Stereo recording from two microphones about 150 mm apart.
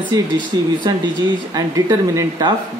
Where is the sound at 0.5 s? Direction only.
25° right (ahead or behind).